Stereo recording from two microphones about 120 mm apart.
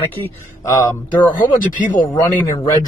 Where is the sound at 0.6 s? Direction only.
25° left (ahead or behind).